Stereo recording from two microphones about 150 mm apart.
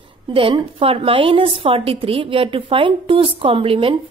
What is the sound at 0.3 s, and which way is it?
A woman's voice, 35° right (ahead or behind).